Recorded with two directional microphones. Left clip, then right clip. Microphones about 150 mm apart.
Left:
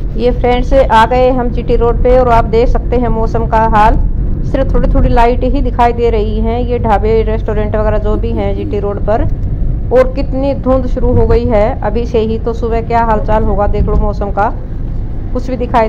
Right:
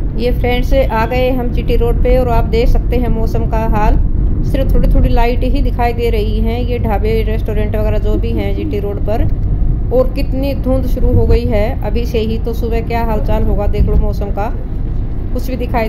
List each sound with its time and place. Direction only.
0.2 s a woman's voice: 15° right (ahead or behind)